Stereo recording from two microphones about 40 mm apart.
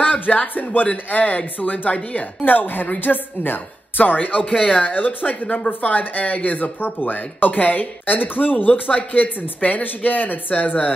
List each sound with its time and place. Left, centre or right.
0.0 s speech: left